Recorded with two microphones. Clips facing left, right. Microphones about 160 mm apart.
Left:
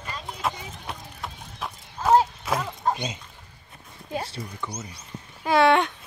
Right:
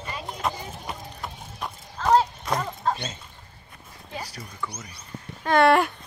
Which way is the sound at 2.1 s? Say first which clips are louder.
Left 1 dB; 5° left (ahead or behind).